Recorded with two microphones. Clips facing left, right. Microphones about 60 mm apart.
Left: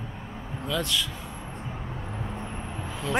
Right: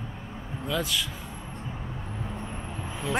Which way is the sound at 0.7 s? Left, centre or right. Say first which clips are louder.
Left 1 dB; centre.